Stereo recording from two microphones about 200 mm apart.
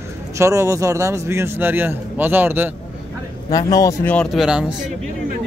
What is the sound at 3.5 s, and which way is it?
Speech, 20° left (ahead or behind).